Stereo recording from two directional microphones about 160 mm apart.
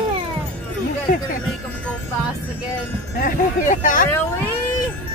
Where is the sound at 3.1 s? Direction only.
60° left (ahead or behind).